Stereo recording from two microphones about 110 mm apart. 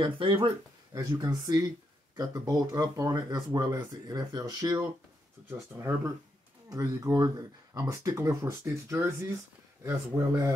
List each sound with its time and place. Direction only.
0.0 s speech: 55° right (ahead or behind)
0.9 s speech: 30° right (ahead or behind)
6.7 s speech: 30° right (ahead or behind)